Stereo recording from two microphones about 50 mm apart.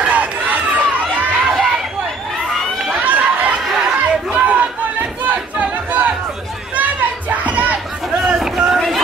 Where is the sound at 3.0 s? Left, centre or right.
Right.